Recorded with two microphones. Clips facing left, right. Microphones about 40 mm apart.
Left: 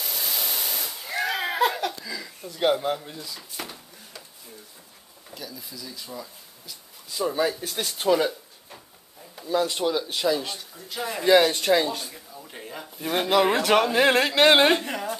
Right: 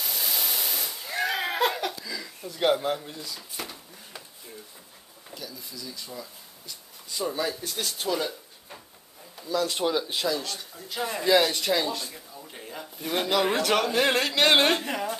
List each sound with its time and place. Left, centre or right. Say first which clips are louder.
0.0 s a sound: even; centre
2.0 s speech: left 1 dB; centre
5.3 s speech: left 1 dB; centre
6.7 s a sound: even; centre
7.3 s speech: left 4 dB; centre
9.7 s speech: left 1 dB; centre
10.2 s speech: left 4 dB; centre
10.6 s speech: even; centre
11.2 s speech: left 4 dB; centre